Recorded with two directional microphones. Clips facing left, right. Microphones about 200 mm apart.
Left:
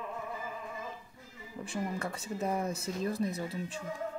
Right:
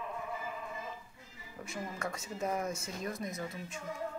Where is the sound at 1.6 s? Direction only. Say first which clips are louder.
Left 4 dB; 30° left (ahead or behind).